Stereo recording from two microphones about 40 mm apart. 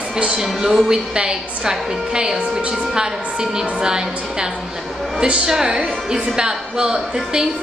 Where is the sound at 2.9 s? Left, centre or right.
Centre.